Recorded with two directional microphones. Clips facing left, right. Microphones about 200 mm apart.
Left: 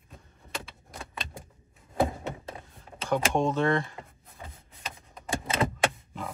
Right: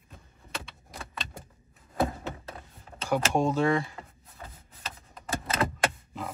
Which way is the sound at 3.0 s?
5° right (ahead or behind).